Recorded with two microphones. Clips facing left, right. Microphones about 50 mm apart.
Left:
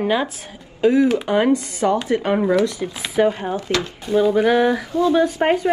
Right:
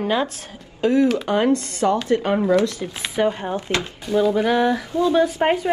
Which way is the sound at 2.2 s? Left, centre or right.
Centre.